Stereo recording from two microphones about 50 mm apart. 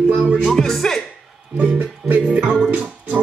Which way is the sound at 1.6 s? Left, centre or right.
Right.